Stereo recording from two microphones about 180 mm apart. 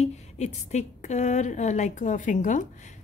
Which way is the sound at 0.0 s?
40° left (ahead or behind).